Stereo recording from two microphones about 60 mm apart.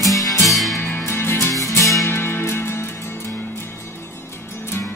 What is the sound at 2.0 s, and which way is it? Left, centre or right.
Music, left.